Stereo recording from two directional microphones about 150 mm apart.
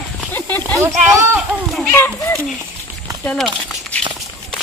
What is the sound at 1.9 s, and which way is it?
Speech, 15° left (ahead or behind).